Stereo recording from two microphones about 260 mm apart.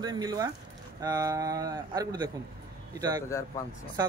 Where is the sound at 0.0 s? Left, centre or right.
Centre.